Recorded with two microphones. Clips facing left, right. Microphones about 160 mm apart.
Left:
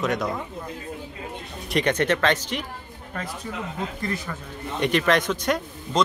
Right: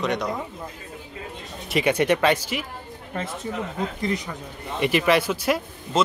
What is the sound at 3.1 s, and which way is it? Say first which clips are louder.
Speech: right 3 dB; 25° right (ahead or behind).